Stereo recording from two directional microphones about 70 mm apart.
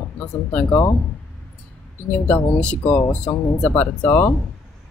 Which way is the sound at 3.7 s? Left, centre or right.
Left.